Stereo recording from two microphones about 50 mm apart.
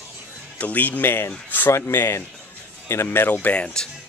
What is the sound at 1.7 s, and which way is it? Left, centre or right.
Speech, left.